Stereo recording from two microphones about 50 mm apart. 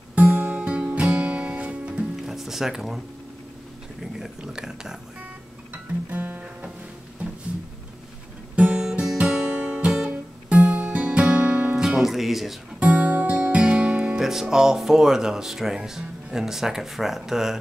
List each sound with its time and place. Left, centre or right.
0.1 s music: right
2.2 s music: centre
4.4 s speech: centre
6.0 s music: right
8.5 s music: centre
11.7 s music: centre
12.7 s music: right
14.2 s speech: centre